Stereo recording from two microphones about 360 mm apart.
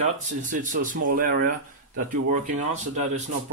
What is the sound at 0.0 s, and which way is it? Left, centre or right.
Speech, right.